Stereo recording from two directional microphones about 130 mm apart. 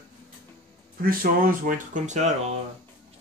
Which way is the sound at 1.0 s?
90° right.